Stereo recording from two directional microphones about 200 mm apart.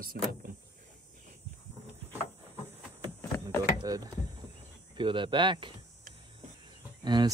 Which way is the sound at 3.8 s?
20° right (ahead or behind).